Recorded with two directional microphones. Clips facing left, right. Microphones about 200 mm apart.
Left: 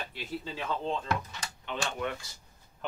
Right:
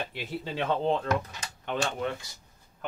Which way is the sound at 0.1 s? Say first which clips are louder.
Right 3 dB; 65° right (ahead or behind).